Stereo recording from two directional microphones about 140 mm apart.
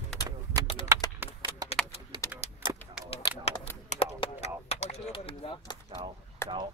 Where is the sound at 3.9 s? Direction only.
50° left (ahead or behind).